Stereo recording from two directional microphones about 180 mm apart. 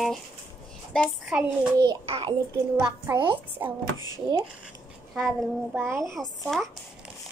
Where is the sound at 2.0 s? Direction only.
30° right (ahead or behind).